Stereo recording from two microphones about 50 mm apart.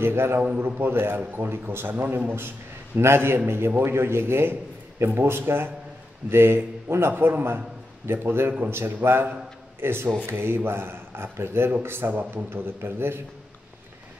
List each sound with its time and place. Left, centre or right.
0.0 s a man's voice: right
0.7 s a man's voice: right
1.9 s a man's voice: right
7.1 s a man's voice: right
12.1 s a man's voice: right
12.4 s a man's voice: right